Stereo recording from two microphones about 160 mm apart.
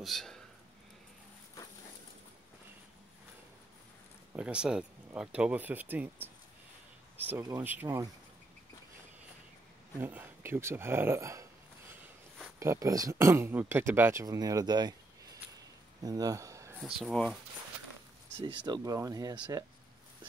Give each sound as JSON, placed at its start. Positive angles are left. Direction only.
{"t": 0.0, "sound": "speech", "side_deg": 0}
{"t": 4.3, "sound": "speech", "side_deg": -5}
{"t": 9.9, "sound": "speech", "side_deg": -15}
{"t": 15.5, "sound": "a sound", "side_deg": -25}
{"t": 16.8, "sound": "speech", "side_deg": 0}
{"t": 18.4, "sound": "speech", "side_deg": -30}